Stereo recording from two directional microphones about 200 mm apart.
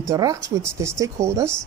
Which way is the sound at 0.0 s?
15° right (ahead or behind).